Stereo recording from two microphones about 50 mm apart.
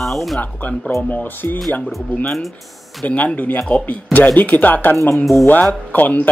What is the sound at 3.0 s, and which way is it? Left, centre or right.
Speech, left.